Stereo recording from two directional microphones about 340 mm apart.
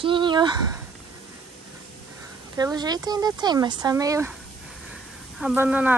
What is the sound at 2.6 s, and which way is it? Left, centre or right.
Speech, centre.